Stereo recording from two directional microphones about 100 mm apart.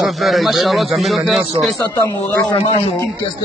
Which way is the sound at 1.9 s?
35° left (ahead or behind).